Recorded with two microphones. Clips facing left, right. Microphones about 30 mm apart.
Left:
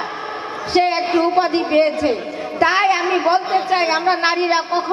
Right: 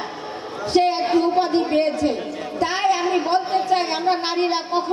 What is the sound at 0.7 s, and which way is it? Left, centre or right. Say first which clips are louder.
A man's voice: left 2 dB; left.